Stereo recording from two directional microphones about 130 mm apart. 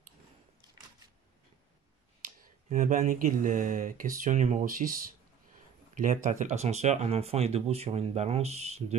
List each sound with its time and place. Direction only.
2.2 s speech: 90° right
5.9 s speech: 75° right (ahead or behind); by 8.9 s 55° right (ahead or behind)